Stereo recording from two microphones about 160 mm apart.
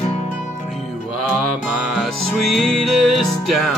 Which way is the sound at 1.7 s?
Centre (ahead or behind).